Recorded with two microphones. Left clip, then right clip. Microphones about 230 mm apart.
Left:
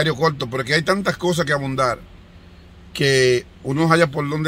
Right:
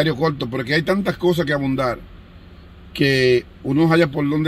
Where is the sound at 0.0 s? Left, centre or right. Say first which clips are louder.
Left 1 dB; left.